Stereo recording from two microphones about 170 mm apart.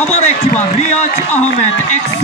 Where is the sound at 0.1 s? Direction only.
40° left (ahead or behind).